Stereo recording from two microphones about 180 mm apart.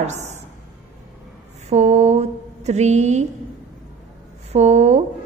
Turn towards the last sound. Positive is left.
turn(degrees=-40)  # may be behind; listen again after turning